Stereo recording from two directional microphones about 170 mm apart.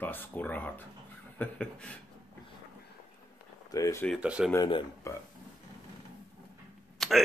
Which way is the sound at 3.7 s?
20° left (ahead or behind).